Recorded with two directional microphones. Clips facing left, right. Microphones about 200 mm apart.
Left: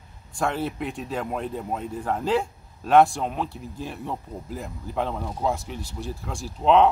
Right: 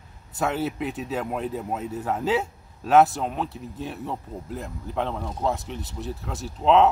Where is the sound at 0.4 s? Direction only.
5° right (ahead or behind).